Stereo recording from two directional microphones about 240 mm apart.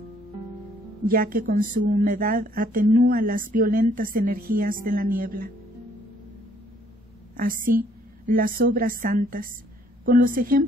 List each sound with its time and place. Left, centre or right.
1.0 s a woman's voice: right
7.3 s a woman's voice: right